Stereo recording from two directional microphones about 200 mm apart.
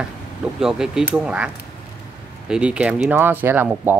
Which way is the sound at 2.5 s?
5° right (ahead or behind).